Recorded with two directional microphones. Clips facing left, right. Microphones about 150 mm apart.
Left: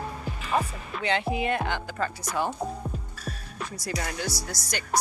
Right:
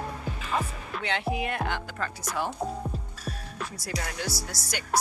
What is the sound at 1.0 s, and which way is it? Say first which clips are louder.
Speech: left 3 dB; centre (ahead or behind).